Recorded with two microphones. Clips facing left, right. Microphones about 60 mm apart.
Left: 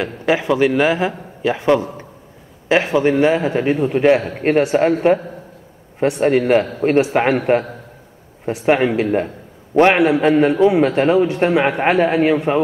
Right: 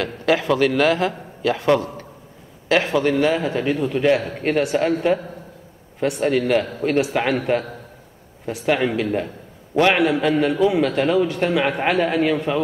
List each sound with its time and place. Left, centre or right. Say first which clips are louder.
0.0 s a man's voice: left 2 dB; centre